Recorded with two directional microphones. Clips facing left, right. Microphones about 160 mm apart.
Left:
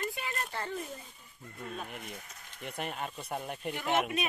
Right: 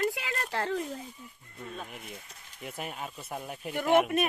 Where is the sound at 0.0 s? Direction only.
90° right.